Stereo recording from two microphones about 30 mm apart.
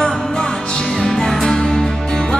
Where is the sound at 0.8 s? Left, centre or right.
Centre.